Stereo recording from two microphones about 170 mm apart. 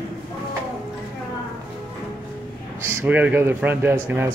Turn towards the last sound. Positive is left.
turn(degrees=-15)  # may be behind; listen again after turning